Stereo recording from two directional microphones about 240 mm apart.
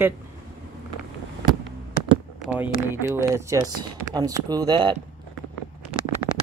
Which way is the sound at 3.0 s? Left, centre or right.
Centre.